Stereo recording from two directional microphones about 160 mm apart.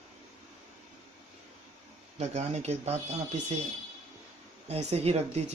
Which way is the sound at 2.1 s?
45° right (ahead or behind).